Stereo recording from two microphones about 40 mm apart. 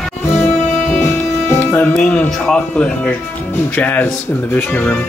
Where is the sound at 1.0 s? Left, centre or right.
Left.